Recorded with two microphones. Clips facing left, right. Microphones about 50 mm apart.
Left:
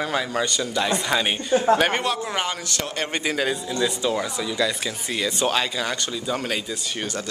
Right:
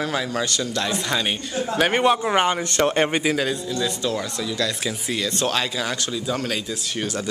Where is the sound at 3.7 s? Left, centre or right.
Centre.